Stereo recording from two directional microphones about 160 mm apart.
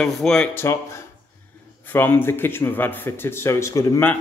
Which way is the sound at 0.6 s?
15° left (ahead or behind).